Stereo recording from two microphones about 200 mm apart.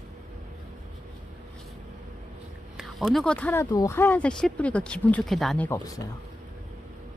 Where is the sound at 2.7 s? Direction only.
Centre (ahead or behind).